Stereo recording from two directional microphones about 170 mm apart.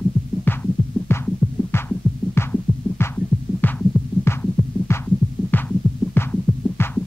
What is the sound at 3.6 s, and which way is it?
Heart sounds, 10° left (ahead or behind).